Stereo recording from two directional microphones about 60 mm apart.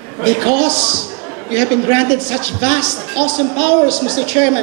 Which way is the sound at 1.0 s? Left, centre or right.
Centre.